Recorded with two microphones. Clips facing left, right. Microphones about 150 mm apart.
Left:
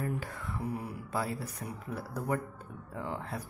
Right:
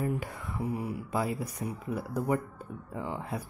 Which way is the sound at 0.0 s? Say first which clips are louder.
Right 3 dB; 15° right (ahead or behind).